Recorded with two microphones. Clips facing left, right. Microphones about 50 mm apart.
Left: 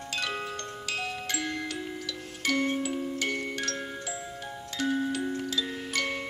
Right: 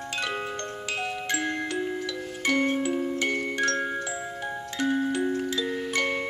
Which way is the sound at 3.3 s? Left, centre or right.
Centre.